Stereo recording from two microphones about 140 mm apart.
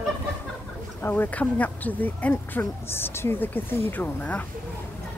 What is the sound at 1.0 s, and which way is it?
Speech, 15° left (ahead or behind).